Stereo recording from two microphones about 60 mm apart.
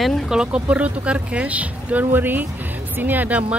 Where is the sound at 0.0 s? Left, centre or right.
Centre.